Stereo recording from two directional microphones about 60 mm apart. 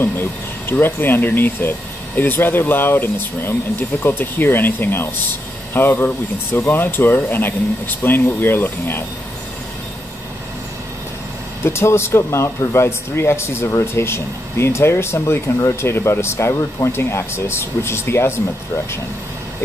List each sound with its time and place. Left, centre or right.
0.0 s speech: left
11.6 s speech: left